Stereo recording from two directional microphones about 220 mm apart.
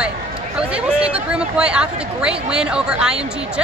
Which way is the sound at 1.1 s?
5° right (ahead or behind).